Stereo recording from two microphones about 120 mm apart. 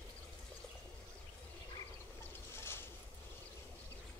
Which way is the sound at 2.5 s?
20° left (ahead or behind).